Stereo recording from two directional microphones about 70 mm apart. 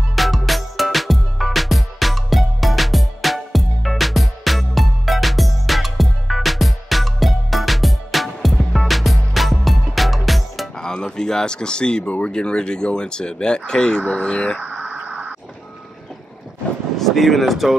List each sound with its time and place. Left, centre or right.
0.1 s music: centre
12.3 s speech: centre
14.6 s a sound: centre
17.1 s speech: centre